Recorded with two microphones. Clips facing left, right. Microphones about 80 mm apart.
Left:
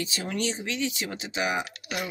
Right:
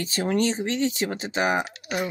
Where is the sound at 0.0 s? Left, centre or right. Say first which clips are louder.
Right 6 dB; right.